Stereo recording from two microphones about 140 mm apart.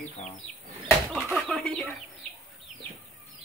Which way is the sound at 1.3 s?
5° left (ahead or behind).